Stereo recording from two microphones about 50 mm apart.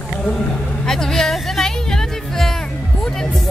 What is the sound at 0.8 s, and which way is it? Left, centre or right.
Music, centre.